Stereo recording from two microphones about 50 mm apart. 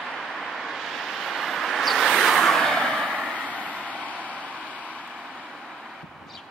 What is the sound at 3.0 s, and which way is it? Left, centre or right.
Vehicle, left.